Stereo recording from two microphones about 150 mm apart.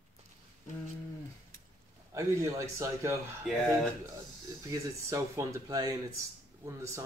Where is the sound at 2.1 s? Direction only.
20° right (ahead or behind).